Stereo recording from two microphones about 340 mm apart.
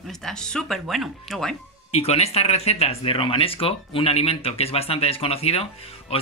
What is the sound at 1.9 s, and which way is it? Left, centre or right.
Speech, centre.